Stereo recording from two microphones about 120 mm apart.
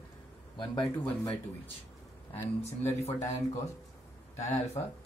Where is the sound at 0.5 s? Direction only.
40° left (ahead or behind).